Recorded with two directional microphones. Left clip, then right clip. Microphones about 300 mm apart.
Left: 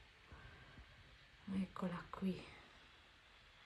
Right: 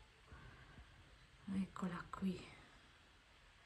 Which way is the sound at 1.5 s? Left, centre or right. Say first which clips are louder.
Left 1 dB; centre.